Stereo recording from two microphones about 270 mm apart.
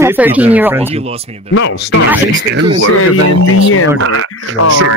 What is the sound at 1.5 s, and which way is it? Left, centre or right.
Speech, left.